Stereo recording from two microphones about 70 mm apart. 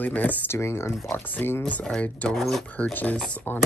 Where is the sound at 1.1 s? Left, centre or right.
Left.